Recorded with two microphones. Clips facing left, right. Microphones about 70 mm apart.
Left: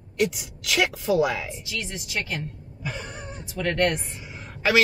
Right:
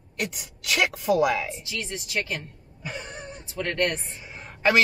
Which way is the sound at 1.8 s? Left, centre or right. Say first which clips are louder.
Right 4 dB; left.